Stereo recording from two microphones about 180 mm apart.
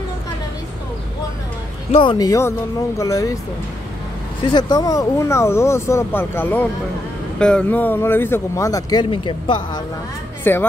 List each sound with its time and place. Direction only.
1.9 s speech: 30° left (ahead or behind)
4.5 s speech: 25° left (ahead or behind)
10.4 s speech: 10° left (ahead or behind)